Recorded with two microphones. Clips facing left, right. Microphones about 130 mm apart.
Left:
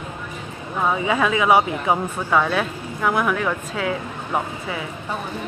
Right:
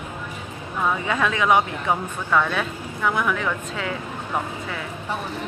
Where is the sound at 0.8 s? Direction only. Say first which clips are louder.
Left 3 dB; 15° left (ahead or behind).